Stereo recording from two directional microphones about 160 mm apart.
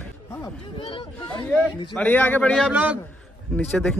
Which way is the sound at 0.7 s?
30° left (ahead or behind).